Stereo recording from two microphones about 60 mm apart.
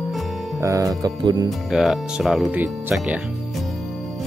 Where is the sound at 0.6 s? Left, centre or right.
Right.